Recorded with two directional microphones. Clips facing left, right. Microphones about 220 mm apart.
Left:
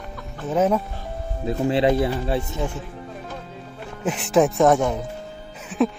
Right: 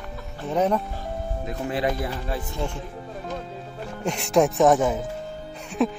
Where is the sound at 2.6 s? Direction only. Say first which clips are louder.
Left 2 dB; 5° left (ahead or behind).